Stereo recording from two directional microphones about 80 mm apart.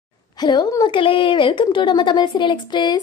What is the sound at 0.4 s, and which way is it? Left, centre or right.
Speech, left.